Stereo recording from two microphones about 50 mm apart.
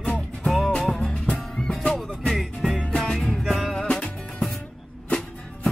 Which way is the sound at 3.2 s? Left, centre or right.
Centre.